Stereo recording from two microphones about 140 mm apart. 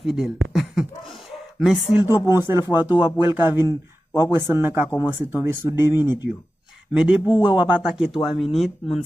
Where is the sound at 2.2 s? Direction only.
20° right (ahead or behind).